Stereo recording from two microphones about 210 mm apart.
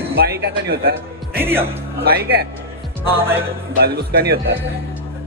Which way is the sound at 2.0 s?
50° right (ahead or behind).